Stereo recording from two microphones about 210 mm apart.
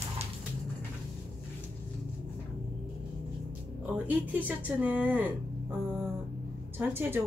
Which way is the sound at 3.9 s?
10° right (ahead or behind).